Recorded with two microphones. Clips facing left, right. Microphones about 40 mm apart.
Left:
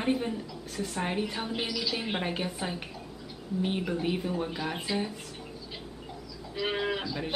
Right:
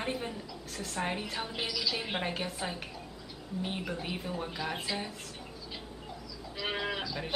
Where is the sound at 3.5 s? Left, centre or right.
Centre.